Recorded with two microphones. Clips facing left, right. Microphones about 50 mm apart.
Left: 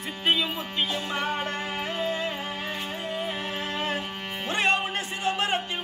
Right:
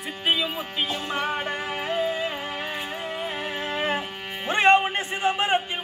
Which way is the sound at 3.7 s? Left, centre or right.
Right.